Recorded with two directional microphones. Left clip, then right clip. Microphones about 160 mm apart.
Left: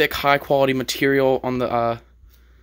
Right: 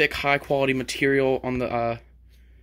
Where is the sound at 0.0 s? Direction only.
25° left (ahead or behind).